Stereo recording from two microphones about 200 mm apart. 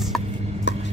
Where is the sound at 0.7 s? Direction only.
60° left (ahead or behind).